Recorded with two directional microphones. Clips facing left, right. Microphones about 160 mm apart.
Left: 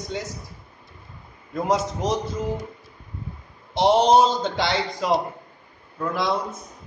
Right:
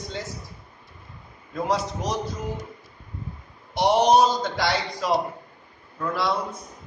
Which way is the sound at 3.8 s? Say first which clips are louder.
Left 2 dB; 25° left (ahead or behind).